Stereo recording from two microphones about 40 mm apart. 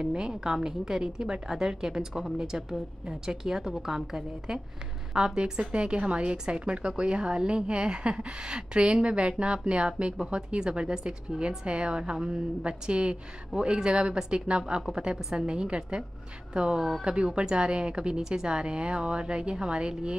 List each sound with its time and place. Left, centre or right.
0.0 s speech: right
0.3 s a woman's voice: centre
5.1 s speech: right